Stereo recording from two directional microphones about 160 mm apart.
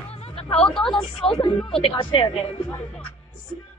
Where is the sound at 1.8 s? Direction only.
35° left (ahead or behind).